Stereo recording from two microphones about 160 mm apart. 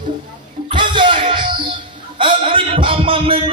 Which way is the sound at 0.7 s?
30° right (ahead or behind).